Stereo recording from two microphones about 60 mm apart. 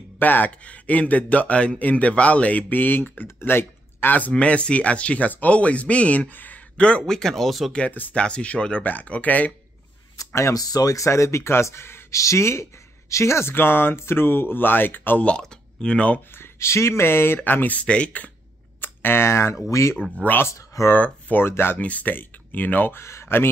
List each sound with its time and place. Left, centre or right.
0.2 s speech: left
4.3 s speech: centre
6.8 s speech: centre
8.1 s speech: centre
10.1 s a sound: left
10.5 s speech: left
15.2 s speech: centre
16.3 s speech: left
18.8 s speech: left
20.9 s speech: left
21.7 s speech: left
23.0 s speech: left